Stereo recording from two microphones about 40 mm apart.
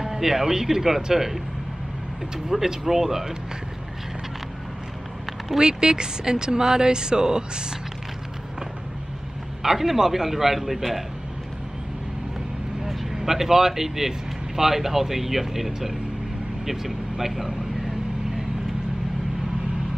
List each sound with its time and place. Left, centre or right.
0.0 s speech: centre
2.5 s speech: centre
5.6 s speech: centre
9.6 s speech: centre
12.8 s speech: centre
16.6 s vehicle: centre